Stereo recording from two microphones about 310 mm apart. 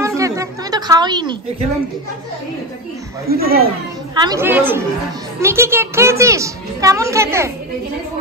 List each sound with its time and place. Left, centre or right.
0.0 s a sound: centre
3.3 s speech: right
4.1 s a woman's voice: centre